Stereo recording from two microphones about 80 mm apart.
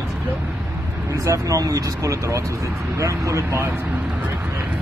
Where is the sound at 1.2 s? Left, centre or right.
Right.